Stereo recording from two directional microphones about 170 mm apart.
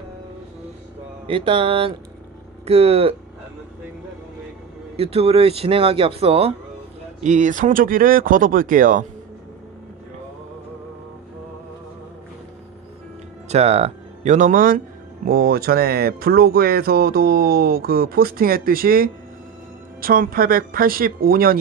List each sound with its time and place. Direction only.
1.2 s speech: 30° right (ahead or behind)
4.9 s speech: 35° right (ahead or behind)
7.2 s speech: 45° right (ahead or behind)
13.5 s speech: 40° right (ahead or behind); by 21.5 s 60° right (ahead or behind)